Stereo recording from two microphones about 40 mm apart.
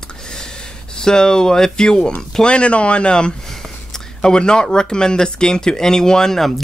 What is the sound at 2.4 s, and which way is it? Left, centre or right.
Speech, left.